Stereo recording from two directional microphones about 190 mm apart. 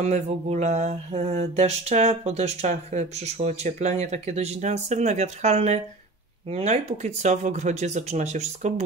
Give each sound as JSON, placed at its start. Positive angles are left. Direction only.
{"t": 0.0, "sound": "mantra", "side_deg": -35}